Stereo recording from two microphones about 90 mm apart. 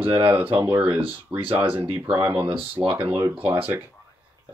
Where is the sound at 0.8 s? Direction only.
75° right (ahead or behind).